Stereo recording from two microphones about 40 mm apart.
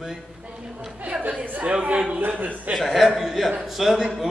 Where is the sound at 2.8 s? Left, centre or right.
Centre.